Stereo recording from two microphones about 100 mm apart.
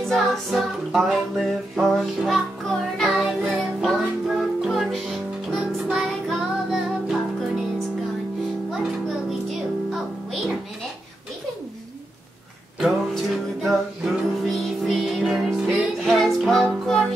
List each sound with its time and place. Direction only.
0.1 s music: centre (ahead or behind)
13.1 s music: centre (ahead or behind)